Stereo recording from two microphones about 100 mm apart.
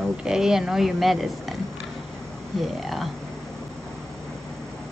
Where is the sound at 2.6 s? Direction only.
Centre (ahead or behind).